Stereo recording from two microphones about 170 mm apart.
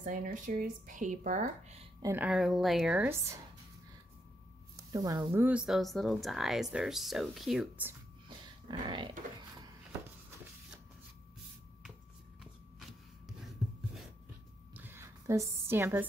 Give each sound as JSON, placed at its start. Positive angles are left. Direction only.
{"t": 0.0, "sound": "speech", "side_deg": -55}
{"t": 2.0, "sound": "speech", "side_deg": -15}
{"t": 2.2, "sound": "a woman's voice", "side_deg": -5}
{"t": 4.7, "sound": "speech", "side_deg": -20}
{"t": 8.6, "sound": "speech", "side_deg": -30}
{"t": 14.7, "sound": "a sound", "side_deg": -10}